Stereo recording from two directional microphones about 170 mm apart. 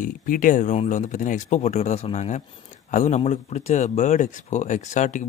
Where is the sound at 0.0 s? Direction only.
55° left (ahead or behind).